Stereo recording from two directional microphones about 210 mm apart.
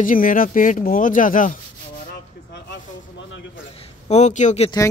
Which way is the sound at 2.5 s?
60° left (ahead or behind).